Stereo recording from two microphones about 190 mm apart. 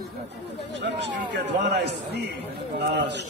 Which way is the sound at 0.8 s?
65° right (ahead or behind).